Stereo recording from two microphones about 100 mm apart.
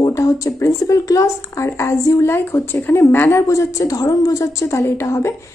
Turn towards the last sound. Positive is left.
turn(degrees=30)  # may be behind; listen again after turning